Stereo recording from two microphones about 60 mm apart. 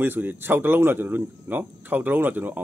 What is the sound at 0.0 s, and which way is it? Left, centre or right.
Speech, right.